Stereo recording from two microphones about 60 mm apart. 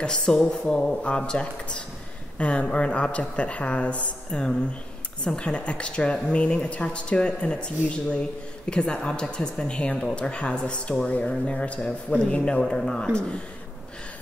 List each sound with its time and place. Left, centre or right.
0.0 s speech: centre